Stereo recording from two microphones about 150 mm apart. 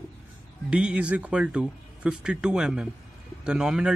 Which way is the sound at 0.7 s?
5° right (ahead or behind).